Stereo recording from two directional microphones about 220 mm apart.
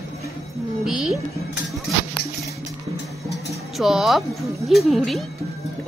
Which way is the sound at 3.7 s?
Centre (ahead or behind).